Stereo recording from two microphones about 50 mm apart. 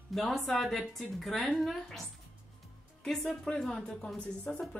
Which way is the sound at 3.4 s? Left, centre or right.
Centre.